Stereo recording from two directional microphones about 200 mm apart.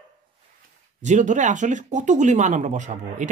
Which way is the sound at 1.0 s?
35° right (ahead or behind).